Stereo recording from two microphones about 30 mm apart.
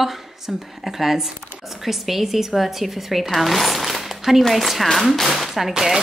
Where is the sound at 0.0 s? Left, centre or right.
Centre.